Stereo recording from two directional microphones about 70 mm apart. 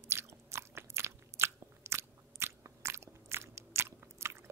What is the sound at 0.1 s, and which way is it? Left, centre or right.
Biting, right.